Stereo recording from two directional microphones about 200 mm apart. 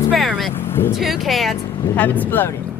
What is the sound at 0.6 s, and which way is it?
Vehicle, 10° left (ahead or behind).